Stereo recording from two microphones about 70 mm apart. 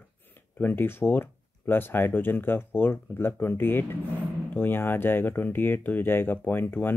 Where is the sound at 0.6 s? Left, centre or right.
Left.